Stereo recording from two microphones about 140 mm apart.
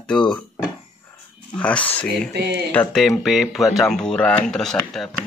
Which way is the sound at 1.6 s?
10° left (ahead or behind).